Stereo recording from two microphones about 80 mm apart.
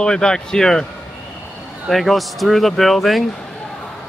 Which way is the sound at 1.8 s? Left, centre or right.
Centre.